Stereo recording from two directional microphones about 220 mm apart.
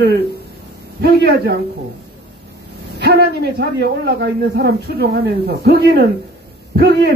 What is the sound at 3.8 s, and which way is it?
A man's voice, 45° right (ahead or behind).